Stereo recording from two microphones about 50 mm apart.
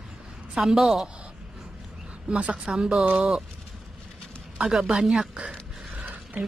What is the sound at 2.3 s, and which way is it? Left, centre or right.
Speech, right.